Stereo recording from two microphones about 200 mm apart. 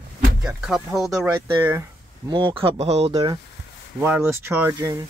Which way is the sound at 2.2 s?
25° right (ahead or behind).